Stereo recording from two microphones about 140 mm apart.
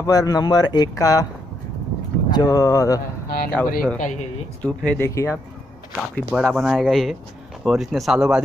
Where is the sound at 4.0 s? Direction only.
60° left (ahead or behind).